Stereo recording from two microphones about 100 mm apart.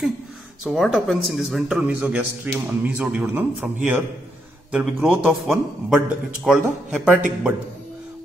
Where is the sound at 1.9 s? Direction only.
15° right (ahead or behind).